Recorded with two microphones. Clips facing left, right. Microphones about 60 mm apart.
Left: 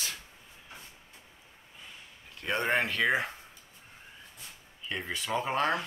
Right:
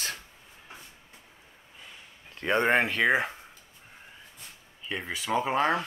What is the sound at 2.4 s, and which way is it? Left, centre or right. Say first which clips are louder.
Speech: right 6 dB; right.